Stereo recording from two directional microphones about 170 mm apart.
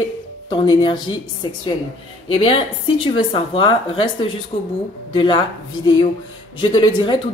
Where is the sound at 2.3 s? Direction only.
30° left (ahead or behind).